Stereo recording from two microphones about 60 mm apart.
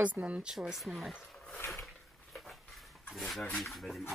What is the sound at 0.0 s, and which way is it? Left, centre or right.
Speech, right.